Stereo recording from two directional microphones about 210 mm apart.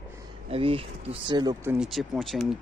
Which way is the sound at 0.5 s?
25° right (ahead or behind).